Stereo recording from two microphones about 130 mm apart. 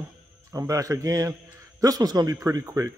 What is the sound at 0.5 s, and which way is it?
A man's voice, 25° right (ahead or behind).